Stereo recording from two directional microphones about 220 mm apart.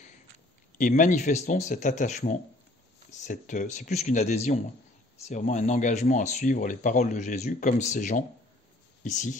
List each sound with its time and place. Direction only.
0.7 s speech: 35° left (ahead or behind)